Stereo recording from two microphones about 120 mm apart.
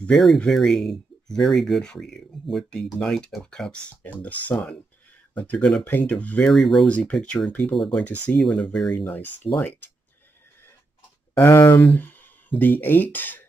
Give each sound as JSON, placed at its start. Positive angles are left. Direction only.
{"t": 0.0, "sound": "speech", "side_deg": 5}
{"t": 11.3, "sound": "speech", "side_deg": 20}